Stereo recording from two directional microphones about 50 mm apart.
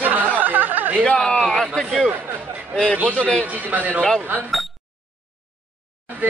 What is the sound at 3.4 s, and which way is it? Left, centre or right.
Speech, right.